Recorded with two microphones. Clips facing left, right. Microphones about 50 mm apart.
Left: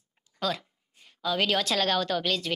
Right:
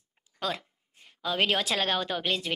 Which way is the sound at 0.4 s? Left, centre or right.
Right.